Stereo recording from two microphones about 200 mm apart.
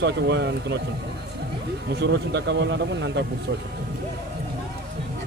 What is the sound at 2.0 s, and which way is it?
Speech, 60° right (ahead or behind).